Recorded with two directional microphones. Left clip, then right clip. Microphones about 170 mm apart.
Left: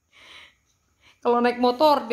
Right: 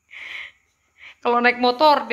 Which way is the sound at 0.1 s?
15° left (ahead or behind).